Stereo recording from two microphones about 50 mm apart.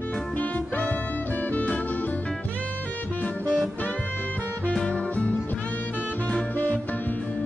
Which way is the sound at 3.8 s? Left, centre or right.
Left.